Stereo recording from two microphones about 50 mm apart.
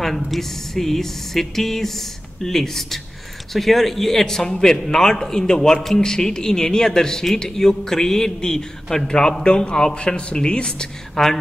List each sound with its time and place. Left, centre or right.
0.0 s a man's voice: centre